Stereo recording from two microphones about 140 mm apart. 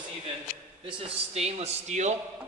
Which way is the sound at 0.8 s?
45° right (ahead or behind).